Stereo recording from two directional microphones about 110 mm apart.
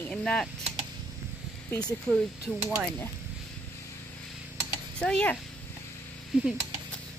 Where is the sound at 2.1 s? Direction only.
5° left (ahead or behind).